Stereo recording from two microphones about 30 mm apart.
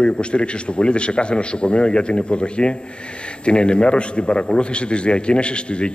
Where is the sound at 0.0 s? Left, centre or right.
Left.